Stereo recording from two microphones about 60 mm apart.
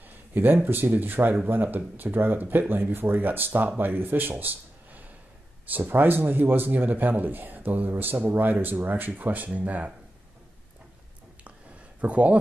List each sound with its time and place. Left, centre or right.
0.3 s speech: right
12.0 s speech: right